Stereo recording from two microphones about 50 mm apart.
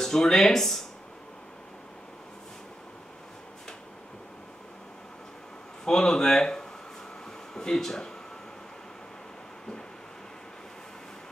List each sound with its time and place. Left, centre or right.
0.0 s speech: centre
5.9 s speech: centre